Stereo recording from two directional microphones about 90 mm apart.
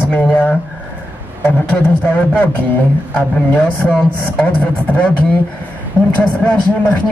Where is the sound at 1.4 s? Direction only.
15° left (ahead or behind).